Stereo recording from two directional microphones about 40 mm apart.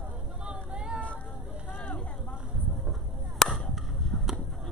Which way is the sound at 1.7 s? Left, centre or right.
Left.